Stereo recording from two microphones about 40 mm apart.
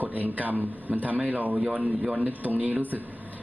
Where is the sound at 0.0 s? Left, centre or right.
Right.